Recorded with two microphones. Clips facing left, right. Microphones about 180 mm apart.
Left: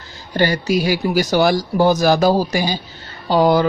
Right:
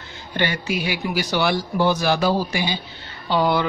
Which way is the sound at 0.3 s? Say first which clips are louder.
Left 7 dB; 40° left (ahead or behind).